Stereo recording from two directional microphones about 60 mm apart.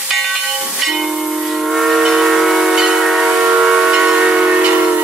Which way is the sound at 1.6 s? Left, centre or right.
Centre.